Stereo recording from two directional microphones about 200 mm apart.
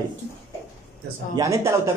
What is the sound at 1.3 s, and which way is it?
Speech, 15° right (ahead or behind).